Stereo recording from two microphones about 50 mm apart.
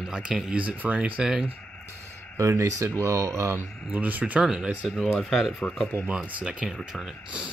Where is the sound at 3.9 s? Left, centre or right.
Right.